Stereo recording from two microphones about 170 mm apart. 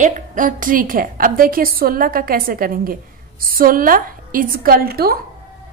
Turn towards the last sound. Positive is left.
turn(degrees=-65)  # may be behind; listen again after turning